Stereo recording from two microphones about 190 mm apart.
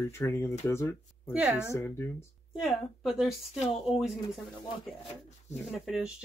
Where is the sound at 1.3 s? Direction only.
5° right (ahead or behind).